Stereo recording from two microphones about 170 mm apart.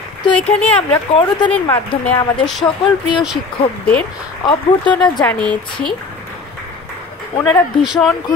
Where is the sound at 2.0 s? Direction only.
5° left (ahead or behind).